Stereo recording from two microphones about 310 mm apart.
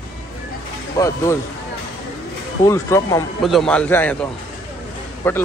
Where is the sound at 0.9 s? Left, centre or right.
Centre.